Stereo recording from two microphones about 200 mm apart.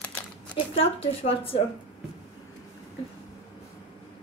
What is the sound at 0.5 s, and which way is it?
A woman's voice, 30° left (ahead or behind).